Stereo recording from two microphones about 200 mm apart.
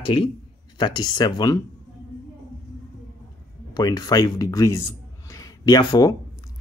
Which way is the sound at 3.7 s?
20° left (ahead or behind).